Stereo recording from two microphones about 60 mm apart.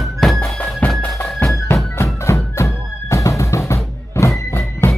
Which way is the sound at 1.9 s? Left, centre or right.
Left.